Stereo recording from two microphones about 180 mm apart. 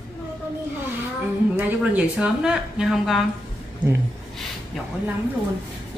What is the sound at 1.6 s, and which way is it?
Speech, 5° right (ahead or behind).